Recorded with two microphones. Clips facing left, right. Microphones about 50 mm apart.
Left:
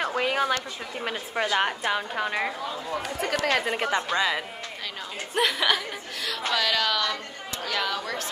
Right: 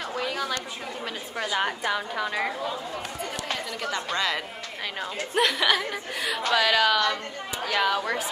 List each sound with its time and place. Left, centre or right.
0.0 s a sound: left
1.0 s a woman's voice: left
3.2 s speech: left
3.6 s a woman's voice: left
3.9 s a woman's voice: centre
5.3 s speech: centre
6.5 s a woman's voice: centre